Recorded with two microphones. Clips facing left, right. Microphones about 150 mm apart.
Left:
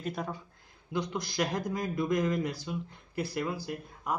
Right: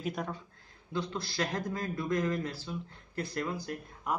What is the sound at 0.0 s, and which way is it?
Speech, centre (ahead or behind).